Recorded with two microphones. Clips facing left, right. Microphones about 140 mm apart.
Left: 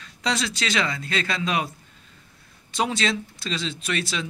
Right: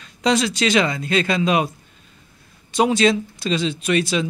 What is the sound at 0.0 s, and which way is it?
A man's voice, 20° right (ahead or behind).